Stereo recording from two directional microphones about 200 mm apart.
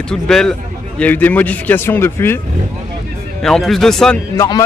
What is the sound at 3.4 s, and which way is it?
Speech, centre (ahead or behind).